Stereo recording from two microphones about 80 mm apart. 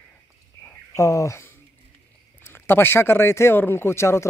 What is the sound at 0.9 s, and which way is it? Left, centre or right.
Speech, left.